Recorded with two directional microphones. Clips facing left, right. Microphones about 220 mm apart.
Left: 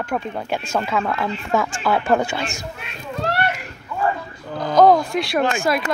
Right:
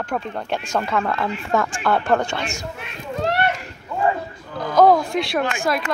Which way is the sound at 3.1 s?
20° right (ahead or behind).